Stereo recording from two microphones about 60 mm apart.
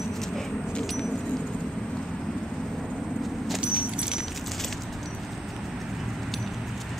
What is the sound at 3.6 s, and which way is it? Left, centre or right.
Keys jangling, centre.